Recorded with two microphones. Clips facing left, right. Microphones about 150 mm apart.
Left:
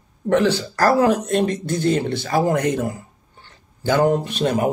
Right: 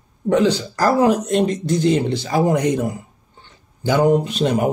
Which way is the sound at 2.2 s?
15° right (ahead or behind).